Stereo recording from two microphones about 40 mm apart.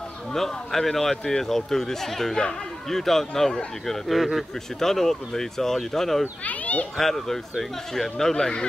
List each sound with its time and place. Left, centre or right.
0.3 s speech: centre
4.1 s speech: centre
4.7 s speech: centre
6.4 s a child's voice: left
7.0 s speech: centre